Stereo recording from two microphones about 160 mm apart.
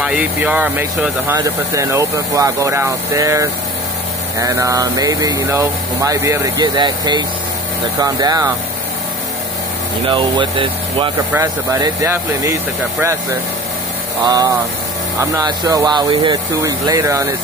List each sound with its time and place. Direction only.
0.0 s speech: 10° right (ahead or behind); by 8.5 s 25° right (ahead or behind)
10.0 s speech: 30° right (ahead or behind)
11.8 s speech: 20° right (ahead or behind)
14.2 s speech: 25° right (ahead or behind)